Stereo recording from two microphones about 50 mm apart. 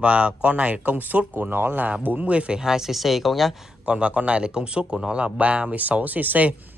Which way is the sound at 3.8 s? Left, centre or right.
Right.